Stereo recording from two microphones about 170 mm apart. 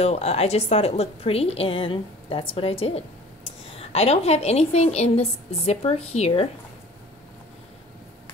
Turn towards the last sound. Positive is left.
turn(degrees=40)  # may be behind; listen again after turning